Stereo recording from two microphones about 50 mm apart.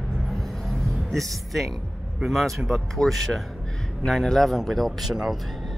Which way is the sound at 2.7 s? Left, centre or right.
Centre.